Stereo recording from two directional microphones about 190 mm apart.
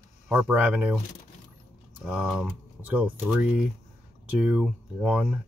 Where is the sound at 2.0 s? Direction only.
5° right (ahead or behind).